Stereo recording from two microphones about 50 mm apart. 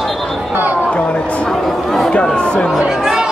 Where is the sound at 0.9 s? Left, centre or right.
Left.